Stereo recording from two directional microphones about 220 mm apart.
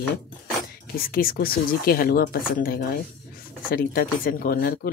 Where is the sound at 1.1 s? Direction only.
40° left (ahead or behind).